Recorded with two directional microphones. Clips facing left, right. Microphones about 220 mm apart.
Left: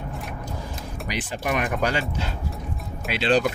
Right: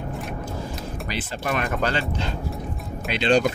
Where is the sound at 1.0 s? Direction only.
15° left (ahead or behind).